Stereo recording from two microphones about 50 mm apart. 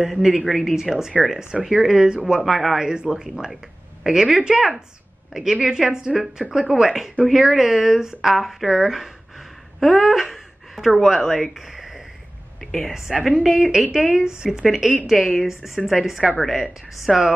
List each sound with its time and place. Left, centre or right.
0.0 s a woman's voice: centre
2.4 s speech: centre
2.9 s a woman's voice: centre
12.5 s a sound: centre
13.2 s a woman's voice: centre